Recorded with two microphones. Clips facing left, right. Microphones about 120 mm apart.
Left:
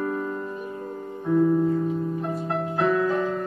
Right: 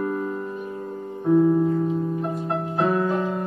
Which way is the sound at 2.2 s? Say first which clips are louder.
Right 1 dB; 30° right (ahead or behind).